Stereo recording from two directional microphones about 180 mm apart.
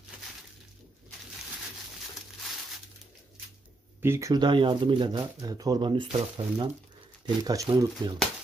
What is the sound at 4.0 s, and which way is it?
Speech, 15° right (ahead or behind).